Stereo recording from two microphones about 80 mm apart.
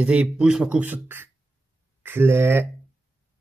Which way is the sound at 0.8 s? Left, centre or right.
Right.